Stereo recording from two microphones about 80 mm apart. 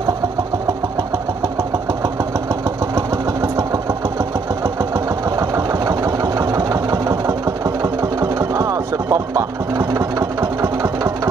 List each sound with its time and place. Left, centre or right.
4.9 s engine: right